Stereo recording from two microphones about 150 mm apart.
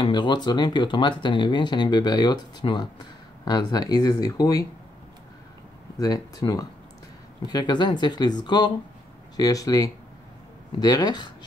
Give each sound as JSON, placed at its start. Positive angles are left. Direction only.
{"t": 0.0, "sound": "speech", "side_deg": 30}
{"t": 5.9, "sound": "speech", "side_deg": 25}